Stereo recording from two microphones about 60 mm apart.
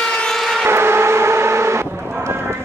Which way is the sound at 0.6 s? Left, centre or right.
Right.